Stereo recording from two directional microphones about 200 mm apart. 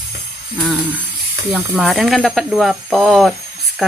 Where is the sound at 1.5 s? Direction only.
Centre (ahead or behind).